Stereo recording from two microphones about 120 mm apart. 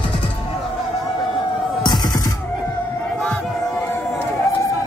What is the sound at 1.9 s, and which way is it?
Music, 30° left (ahead or behind).